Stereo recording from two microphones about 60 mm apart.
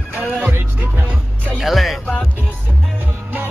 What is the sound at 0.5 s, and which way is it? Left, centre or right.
Music, right.